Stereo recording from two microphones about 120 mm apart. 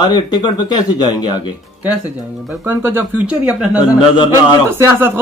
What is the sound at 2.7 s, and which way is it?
Speech, 15° right (ahead or behind).